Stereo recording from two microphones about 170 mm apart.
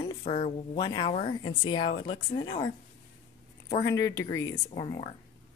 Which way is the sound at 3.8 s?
20° left (ahead or behind).